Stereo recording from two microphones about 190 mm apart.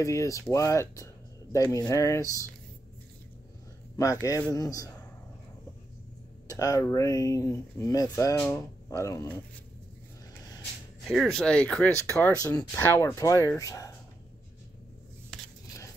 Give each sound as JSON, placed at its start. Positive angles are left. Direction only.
{"t": 0.0, "sound": "speech", "side_deg": 15}
{"t": 3.9, "sound": "speech", "side_deg": 15}
{"t": 6.5, "sound": "speech", "side_deg": 20}
{"t": 11.1, "sound": "speech", "side_deg": 0}
{"t": 12.4, "sound": "speech", "side_deg": 15}